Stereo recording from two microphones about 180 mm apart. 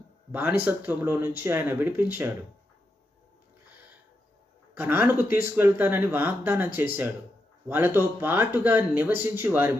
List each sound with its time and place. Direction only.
0.3 s speech: 10° right (ahead or behind)
4.7 s speech: 10° right (ahead or behind)